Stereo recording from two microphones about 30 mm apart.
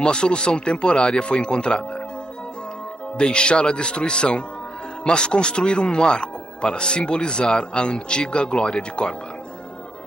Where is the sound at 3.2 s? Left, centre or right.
Left.